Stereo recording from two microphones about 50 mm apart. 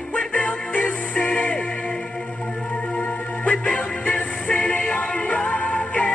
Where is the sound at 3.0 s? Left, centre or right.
Left.